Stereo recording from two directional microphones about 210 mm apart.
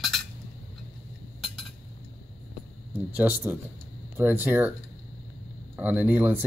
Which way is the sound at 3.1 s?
10° right (ahead or behind).